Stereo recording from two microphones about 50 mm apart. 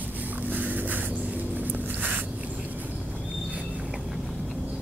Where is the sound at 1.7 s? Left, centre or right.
Right.